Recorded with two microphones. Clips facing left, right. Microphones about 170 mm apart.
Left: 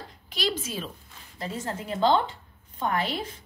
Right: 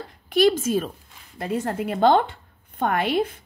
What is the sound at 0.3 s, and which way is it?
A woman's voice, 55° right (ahead or behind).